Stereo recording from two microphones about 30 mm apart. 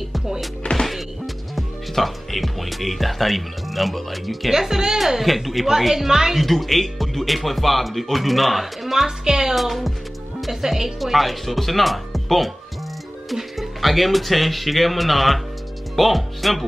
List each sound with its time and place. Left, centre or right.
0.8 s music: centre
4.5 s a woman's voice: centre
6.4 s speech: centre
9.2 s a woman's voice: centre
9.6 s a woman's voice: centre
11.0 s speech: centre